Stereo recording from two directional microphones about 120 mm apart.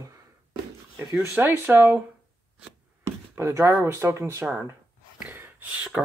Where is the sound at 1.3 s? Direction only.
15° right (ahead or behind).